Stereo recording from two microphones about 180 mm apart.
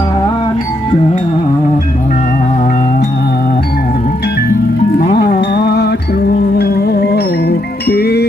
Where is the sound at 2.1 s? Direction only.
45° left (ahead or behind).